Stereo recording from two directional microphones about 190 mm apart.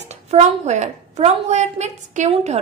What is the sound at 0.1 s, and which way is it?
A woman's voice, 35° right (ahead or behind).